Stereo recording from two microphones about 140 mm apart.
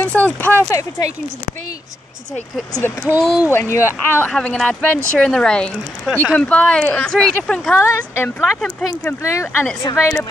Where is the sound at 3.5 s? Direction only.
15° left (ahead or behind).